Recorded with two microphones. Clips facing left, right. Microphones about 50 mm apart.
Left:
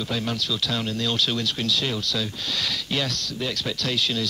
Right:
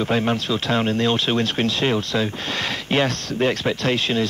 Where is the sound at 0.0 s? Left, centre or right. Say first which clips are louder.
Right 7 dB; right.